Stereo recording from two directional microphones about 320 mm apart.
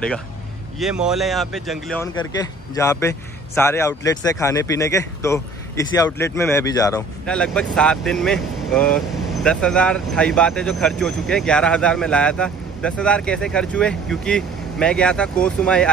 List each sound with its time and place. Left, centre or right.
0.7 s speech: centre